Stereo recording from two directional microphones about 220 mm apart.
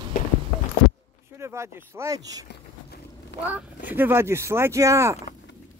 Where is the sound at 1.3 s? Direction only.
10° right (ahead or behind).